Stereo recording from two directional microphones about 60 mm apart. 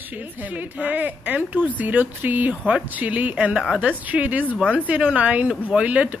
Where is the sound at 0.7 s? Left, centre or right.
Right.